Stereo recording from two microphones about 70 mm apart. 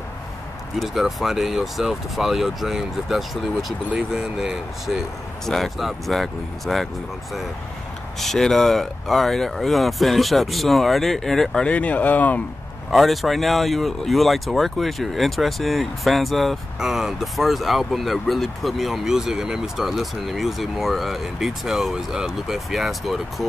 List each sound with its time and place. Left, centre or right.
0.7 s speech: centre
8.2 s speech: centre
11.6 s speech: centre
12.9 s speech: centre